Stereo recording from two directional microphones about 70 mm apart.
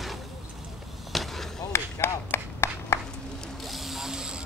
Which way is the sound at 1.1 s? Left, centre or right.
Centre.